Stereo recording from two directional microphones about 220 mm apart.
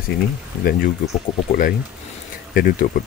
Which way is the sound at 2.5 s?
45° left (ahead or behind).